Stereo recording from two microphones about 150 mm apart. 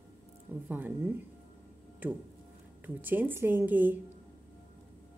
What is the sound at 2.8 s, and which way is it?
A woman's voice, 10° right (ahead or behind).